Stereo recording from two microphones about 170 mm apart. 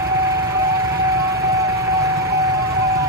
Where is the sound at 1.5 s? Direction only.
20° right (ahead or behind).